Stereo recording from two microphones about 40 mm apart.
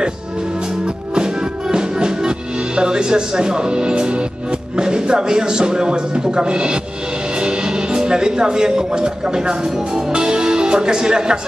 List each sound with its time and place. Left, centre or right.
0.6 s music: right
7.3 s speech: right